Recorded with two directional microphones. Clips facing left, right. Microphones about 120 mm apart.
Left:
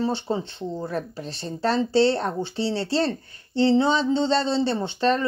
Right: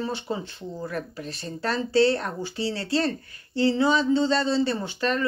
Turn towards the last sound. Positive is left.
turn(degrees=30)  # may be behind; listen again after turning